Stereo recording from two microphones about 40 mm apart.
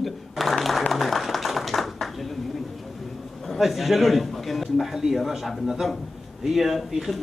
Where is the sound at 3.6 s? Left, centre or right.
Centre.